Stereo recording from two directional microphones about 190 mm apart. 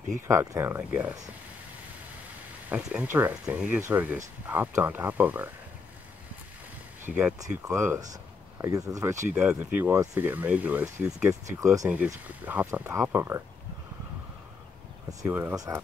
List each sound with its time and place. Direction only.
0.3 s speech: 15° right (ahead or behind)
2.7 s speech: 10° right (ahead or behind)
7.6 s speech: 15° right (ahead or behind)
9.3 s speech: 5° right (ahead or behind)
11.6 s speech: 15° right (ahead or behind)
15.0 s speech: 10° right (ahead or behind)